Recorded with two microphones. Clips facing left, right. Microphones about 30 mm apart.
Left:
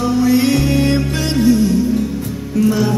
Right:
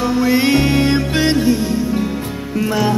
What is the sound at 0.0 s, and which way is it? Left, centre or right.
Music, right.